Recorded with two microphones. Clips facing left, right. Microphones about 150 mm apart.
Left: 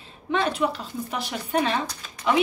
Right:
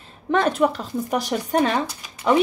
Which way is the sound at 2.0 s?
10° right (ahead or behind).